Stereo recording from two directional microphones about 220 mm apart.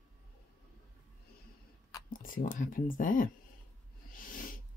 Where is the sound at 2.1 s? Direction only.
40° left (ahead or behind).